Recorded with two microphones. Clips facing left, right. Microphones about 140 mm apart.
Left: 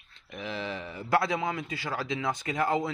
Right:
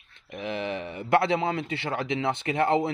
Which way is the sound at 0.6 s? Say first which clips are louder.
Right 4 dB; 20° right (ahead or behind).